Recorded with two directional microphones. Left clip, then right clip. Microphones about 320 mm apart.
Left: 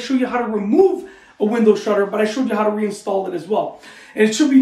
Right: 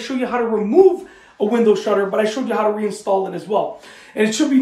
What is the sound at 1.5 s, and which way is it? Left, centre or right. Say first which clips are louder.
Speech: even; centre.